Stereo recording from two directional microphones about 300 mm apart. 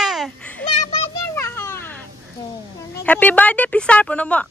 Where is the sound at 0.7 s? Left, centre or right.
Centre.